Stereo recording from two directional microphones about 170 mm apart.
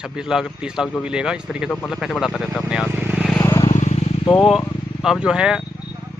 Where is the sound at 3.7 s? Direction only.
40° left (ahead or behind).